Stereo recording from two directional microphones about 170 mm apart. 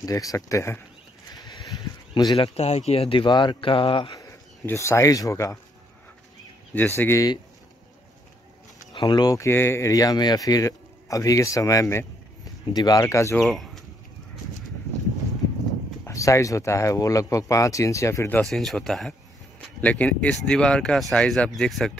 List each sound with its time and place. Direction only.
0.0 s speech: 20° left (ahead or behind)
7.0 s speech: 15° left (ahead or behind)
8.9 s speech: 25° left (ahead or behind)
13.4 s speech: centre (ahead or behind)
16.1 s speech: 20° left (ahead or behind)
18.4 s speech: centre (ahead or behind)